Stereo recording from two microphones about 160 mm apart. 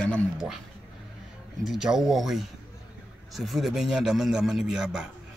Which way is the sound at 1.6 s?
Centre (ahead or behind).